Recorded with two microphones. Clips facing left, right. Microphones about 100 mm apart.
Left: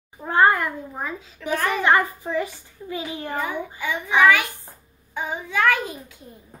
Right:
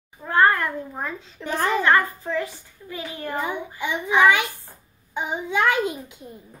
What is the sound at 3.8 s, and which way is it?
A child's voice, 20° right (ahead or behind).